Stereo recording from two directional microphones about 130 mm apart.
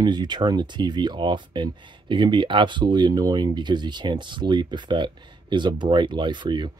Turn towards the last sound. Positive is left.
turn(degrees=-35)  # may be behind; listen again after turning